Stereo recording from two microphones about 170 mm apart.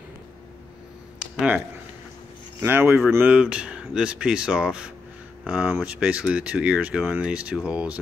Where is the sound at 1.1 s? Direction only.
5° right (ahead or behind).